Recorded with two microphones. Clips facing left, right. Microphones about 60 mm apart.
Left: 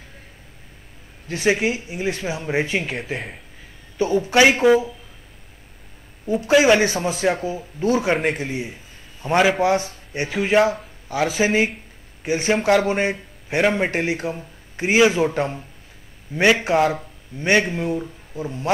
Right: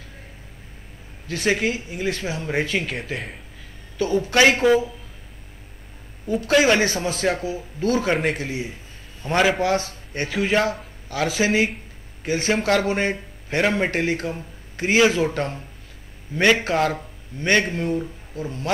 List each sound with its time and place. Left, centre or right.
1.3 s speech: centre
2.9 s a man's voice: centre
4.2 s speech: centre
6.2 s a man's voice: centre
16.3 s a man's voice: centre
16.6 s speech: centre